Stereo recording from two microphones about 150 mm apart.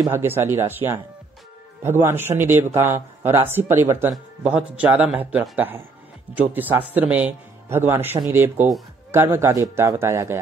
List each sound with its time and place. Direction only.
0.0 s a man's voice: 15° right (ahead or behind)
4.1 s a man's voice: 5° right (ahead or behind)